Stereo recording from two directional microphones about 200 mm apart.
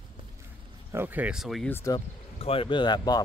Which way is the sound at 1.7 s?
15° left (ahead or behind).